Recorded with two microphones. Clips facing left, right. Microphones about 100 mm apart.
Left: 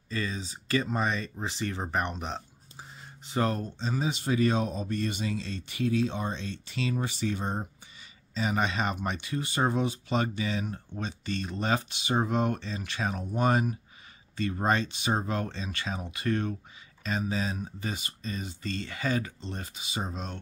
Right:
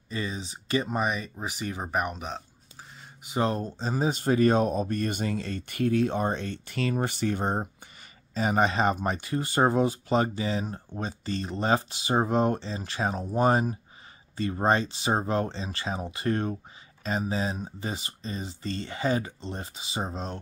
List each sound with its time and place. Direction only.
0.1 s speech: 20° right (ahead or behind); by 2.4 s centre (ahead or behind)
3.3 s speech: 20° right (ahead or behind)
3.8 s speech: 40° right (ahead or behind); by 7.7 s 60° right (ahead or behind)
8.4 s speech: 40° right (ahead or behind)